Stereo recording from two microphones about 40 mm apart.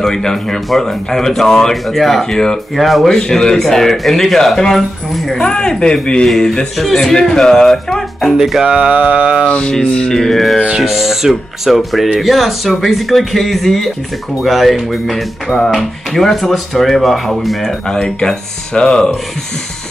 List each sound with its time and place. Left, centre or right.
0.0 s speech: centre
2.3 s speech: centre
2.7 s speech: centre
3.1 s speech: centre
5.5 s speech: centre
6.8 s speech: centre
8.3 s speech: centre
8.6 s mantra: right
8.9 s mantra: right
9.5 s speech: left
10.1 s speech: centre
10.8 s speech: centre
16.1 s speech: centre
18.0 s speech: centre